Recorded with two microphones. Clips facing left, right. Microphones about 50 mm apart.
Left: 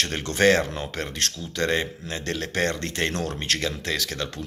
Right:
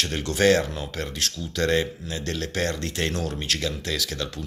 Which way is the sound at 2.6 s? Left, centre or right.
Left.